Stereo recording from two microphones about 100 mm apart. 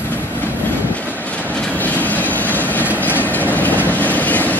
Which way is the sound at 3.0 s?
15° left (ahead or behind).